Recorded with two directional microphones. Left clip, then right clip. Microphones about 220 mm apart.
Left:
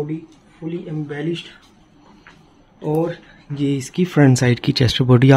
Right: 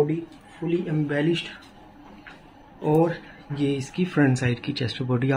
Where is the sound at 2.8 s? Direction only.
30° left (ahead or behind).